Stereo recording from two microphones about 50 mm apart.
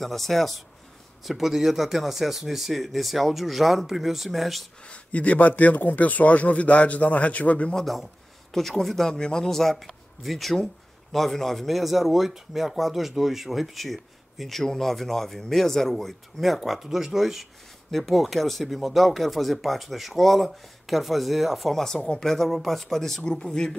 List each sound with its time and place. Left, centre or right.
0.0 s a man's voice: centre
5.1 s speech: left
7.7 s a man's voice: centre
21.8 s speech: centre